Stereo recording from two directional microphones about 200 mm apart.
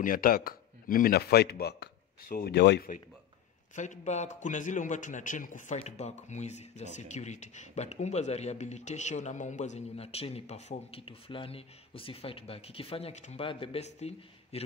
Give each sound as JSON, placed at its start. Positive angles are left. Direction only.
{"t": 0.0, "sound": "speech", "side_deg": 45}
{"t": 3.7, "sound": "speech", "side_deg": 40}